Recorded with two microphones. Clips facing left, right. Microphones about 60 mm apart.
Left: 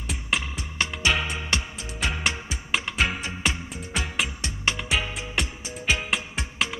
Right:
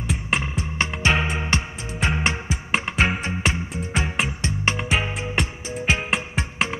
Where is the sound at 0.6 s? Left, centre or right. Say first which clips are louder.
Right 4 dB; right.